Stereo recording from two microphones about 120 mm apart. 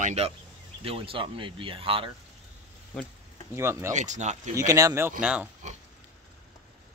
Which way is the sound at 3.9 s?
85° right.